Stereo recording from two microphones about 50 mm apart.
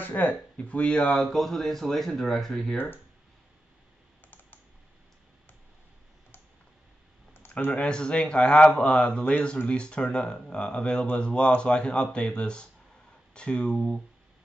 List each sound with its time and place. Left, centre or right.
0.0 s speech: left
0.6 s speech: left
1.1 s speech: centre
7.7 s speech: centre